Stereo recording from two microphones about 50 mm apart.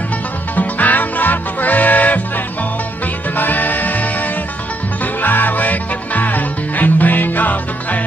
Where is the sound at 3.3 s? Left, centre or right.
Left.